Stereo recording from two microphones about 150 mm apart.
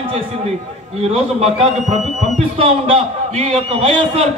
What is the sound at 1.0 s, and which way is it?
A man's voice, 45° right (ahead or behind).